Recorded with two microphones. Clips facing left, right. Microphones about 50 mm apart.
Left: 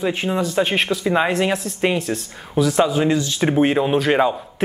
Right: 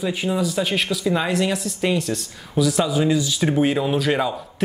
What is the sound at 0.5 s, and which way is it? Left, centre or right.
Speech, left.